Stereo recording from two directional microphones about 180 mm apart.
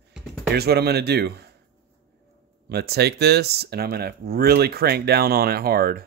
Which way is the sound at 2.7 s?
60° right (ahead or behind).